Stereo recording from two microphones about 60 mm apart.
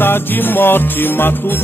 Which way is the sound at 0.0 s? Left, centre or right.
Left.